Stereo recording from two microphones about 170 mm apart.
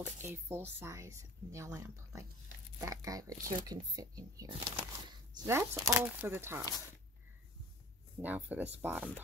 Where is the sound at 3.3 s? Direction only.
55° right (ahead or behind).